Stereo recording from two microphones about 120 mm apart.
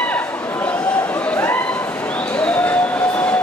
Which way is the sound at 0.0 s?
10° left (ahead or behind).